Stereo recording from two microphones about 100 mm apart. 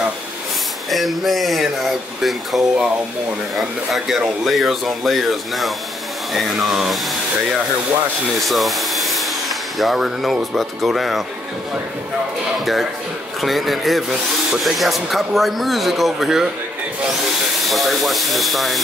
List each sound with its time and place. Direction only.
0.8 s speech: centre (ahead or behind)
8.4 s vacuum cleaner: centre (ahead or behind)
9.8 s speech: centre (ahead or behind)
12.5 s speech: centre (ahead or behind)
17.6 s speech: centre (ahead or behind)